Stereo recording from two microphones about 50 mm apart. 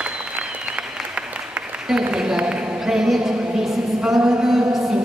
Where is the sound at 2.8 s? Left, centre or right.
Centre.